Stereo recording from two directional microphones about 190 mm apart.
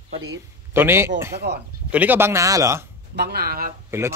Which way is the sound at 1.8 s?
10° right (ahead or behind).